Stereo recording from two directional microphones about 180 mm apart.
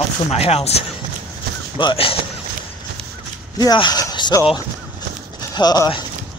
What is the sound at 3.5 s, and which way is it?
Speech, 25° left (ahead or behind).